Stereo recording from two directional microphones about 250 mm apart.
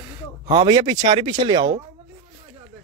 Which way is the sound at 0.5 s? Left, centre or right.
Centre.